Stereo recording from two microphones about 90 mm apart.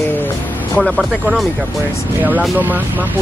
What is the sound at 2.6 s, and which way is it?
Speech, 20° right (ahead or behind).